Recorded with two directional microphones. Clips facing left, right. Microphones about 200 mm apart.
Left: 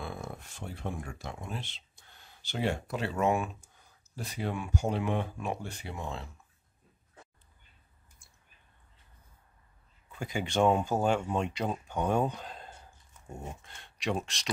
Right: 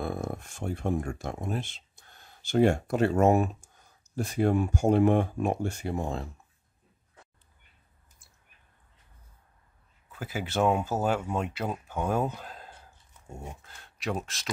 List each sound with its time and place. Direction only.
0.0 s speech: 50° right (ahead or behind)
8.2 s a sound: centre (ahead or behind)
10.1 s speech: 5° right (ahead or behind)